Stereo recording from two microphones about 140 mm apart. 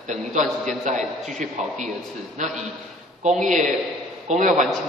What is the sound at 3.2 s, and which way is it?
Speech, 60° right (ahead or behind).